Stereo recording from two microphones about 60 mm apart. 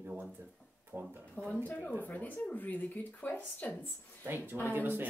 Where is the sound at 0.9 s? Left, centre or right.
Right.